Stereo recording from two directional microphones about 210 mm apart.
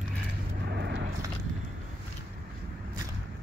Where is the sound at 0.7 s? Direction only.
55° right (ahead or behind).